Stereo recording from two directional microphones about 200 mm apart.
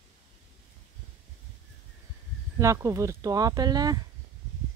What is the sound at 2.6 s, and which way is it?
Speech, 15° right (ahead or behind).